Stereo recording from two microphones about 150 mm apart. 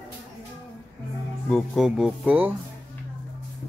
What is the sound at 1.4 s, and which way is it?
Speech, 5° left (ahead or behind).